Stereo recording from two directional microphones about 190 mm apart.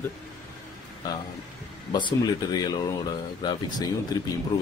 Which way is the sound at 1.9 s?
25° left (ahead or behind).